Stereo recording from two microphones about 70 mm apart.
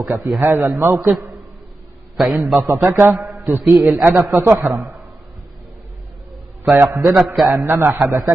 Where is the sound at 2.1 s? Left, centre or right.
Centre.